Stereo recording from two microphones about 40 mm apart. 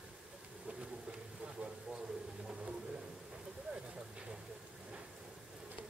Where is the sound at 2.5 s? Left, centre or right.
Right.